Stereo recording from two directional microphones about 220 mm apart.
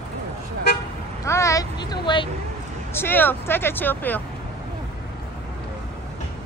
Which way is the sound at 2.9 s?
10° left (ahead or behind).